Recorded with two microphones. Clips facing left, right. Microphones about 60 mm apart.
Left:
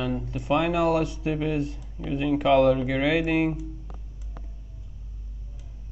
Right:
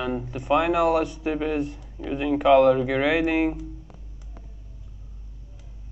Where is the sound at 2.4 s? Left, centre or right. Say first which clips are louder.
Right 3 dB; centre.